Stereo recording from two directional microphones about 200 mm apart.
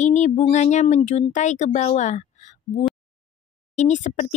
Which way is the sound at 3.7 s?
35° left (ahead or behind).